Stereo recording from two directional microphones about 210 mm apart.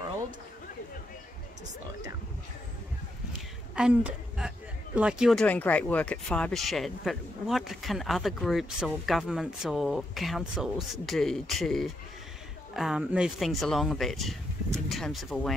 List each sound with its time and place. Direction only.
3.7 s a woman's voice: 5° right (ahead or behind)